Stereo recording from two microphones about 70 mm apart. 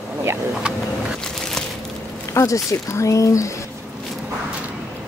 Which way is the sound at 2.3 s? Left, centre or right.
Left.